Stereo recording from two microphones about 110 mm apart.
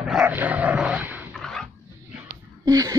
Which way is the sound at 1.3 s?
5° left (ahead or behind).